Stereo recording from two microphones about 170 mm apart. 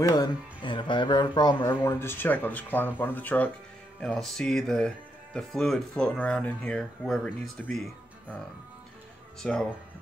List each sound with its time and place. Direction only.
0.0 s speech: 20° left (ahead or behind); by 8.4 s centre (ahead or behind)
9.4 s speech: 5° left (ahead or behind)